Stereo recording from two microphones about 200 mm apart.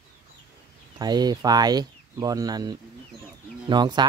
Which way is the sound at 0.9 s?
20° right (ahead or behind).